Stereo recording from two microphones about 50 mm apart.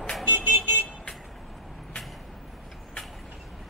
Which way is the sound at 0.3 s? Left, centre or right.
Right.